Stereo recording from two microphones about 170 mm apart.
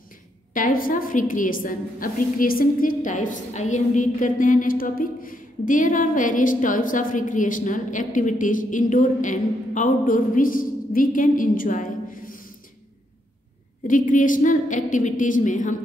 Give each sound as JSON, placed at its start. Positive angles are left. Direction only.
{"t": 0.5, "sound": "a woman's voice", "side_deg": 55}
{"t": 13.8, "sound": "a woman's voice", "side_deg": 50}